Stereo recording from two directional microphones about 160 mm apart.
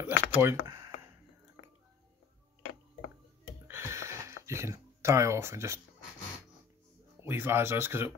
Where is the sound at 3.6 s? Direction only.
15° right (ahead or behind).